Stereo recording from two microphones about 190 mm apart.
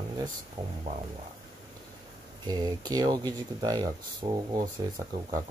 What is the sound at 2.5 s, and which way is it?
Speech, 20° right (ahead or behind).